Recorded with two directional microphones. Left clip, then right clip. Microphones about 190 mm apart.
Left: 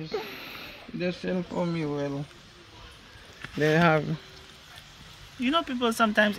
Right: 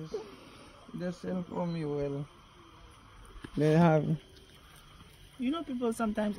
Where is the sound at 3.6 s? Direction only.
50° right (ahead or behind).